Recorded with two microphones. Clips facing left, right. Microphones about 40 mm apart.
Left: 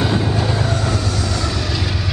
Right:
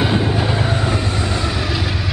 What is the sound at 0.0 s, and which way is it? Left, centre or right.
Train, centre.